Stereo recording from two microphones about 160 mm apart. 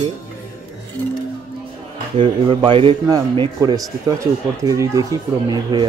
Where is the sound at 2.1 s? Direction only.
35° right (ahead or behind).